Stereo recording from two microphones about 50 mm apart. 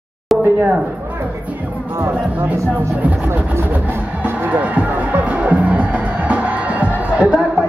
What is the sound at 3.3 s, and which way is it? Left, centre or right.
Speech, right.